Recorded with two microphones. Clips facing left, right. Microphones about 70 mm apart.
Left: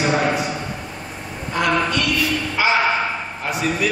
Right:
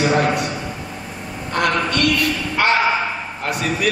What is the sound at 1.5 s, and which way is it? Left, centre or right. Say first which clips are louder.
Speech: even; right.